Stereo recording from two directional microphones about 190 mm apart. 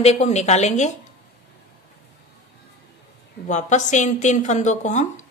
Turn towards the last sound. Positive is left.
turn(degrees=40)  # may be behind; listen again after turning